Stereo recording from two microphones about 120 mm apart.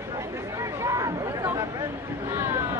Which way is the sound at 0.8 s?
25° right (ahead or behind).